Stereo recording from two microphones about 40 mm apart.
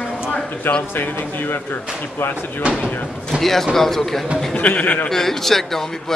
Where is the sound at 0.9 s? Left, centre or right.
Left.